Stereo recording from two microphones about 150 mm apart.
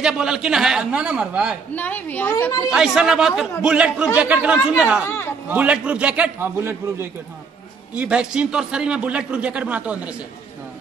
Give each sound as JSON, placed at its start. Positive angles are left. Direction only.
{"t": 0.0, "sound": "a man's voice", "side_deg": -5}
{"t": 1.8, "sound": "a woman's voice", "side_deg": 10}
{"t": 2.3, "sound": "a woman's voice", "side_deg": 20}
{"t": 2.7, "sound": "a man's voice", "side_deg": -5}
{"t": 5.0, "sound": "a woman's voice", "side_deg": 15}
{"t": 5.5, "sound": "a man's voice", "side_deg": -10}